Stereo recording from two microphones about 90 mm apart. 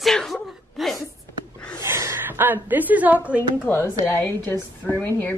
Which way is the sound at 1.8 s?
30° right (ahead or behind).